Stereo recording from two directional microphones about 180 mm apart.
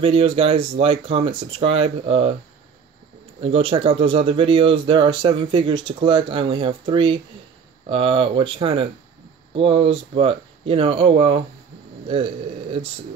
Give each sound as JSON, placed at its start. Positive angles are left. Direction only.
{"t": 0.0, "sound": "speech", "side_deg": -30}
{"t": 3.3, "sound": "speech", "side_deg": -30}